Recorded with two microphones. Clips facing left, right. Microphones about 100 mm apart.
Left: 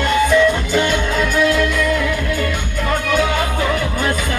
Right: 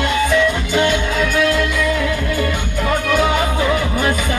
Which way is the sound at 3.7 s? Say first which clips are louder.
Right 2 dB; 5° right (ahead or behind).